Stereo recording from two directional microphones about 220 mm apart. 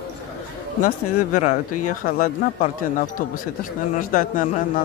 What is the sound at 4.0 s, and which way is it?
Speech, 40° left (ahead or behind).